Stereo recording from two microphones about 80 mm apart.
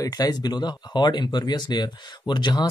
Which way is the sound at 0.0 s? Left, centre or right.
Left.